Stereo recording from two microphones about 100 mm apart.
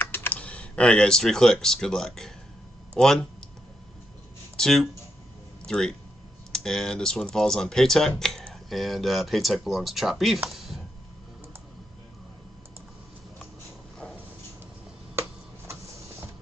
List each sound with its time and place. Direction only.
0.0 s speech: 20° left (ahead or behind); by 3.3 s 5° left (ahead or behind)
4.6 s speech: 5° left (ahead or behind)
10.5 s a sound: centre (ahead or behind)
15.1 s tick-tock: 25° right (ahead or behind)